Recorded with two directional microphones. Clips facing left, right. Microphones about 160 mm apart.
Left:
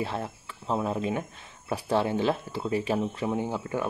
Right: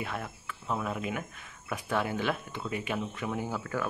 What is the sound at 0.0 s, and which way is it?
Speech, 30° left (ahead or behind).